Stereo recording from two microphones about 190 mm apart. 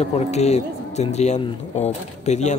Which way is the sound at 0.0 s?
35° left (ahead or behind).